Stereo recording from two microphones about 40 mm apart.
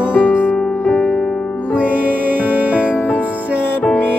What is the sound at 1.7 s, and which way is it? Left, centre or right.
Music, right.